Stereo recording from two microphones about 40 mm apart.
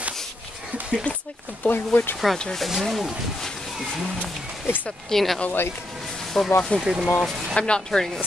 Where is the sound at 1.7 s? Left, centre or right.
Left.